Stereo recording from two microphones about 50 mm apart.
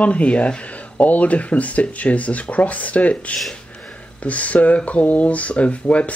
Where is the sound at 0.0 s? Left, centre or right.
Left.